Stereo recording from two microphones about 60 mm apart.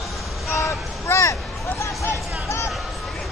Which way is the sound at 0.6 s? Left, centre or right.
Left.